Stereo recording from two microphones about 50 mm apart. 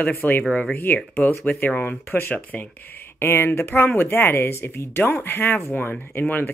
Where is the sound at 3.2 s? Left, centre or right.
Left.